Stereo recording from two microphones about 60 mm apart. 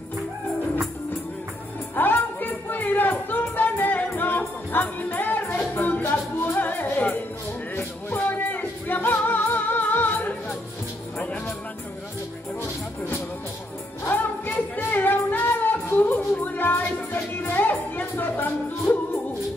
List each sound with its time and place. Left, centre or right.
2.0 s music: left
8.2 s music: left
14.0 s music: left